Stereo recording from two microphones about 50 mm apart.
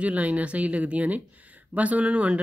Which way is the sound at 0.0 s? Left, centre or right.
Right.